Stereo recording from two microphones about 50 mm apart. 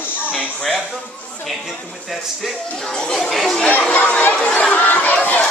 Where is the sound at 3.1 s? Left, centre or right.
Centre.